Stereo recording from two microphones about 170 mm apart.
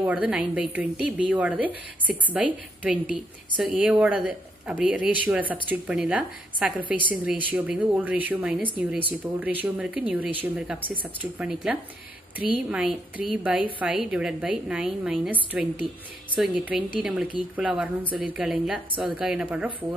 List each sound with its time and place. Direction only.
0.0 s speech: 10° right (ahead or behind)
10.8 s speech: 30° right (ahead or behind)
11.3 s a woman's voice: 5° right (ahead or behind)